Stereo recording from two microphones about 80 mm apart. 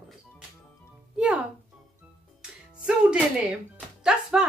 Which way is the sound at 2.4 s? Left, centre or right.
Centre.